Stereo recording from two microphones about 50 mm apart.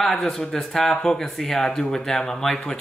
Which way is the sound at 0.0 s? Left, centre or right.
Centre.